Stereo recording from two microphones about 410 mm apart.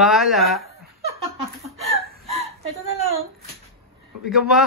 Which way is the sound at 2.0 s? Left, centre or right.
Right.